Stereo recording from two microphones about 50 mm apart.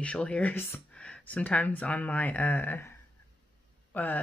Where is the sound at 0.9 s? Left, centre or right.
Left.